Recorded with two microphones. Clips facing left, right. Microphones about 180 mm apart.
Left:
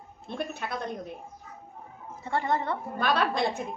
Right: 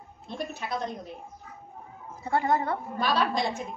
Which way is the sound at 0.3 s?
60° left (ahead or behind).